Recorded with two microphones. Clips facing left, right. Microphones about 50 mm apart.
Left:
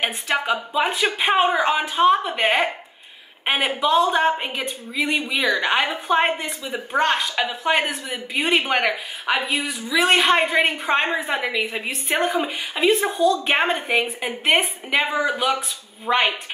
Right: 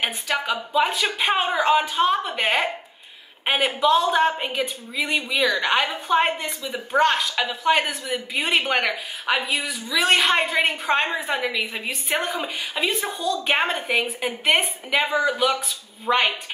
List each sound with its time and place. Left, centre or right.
0.5 s speech: centre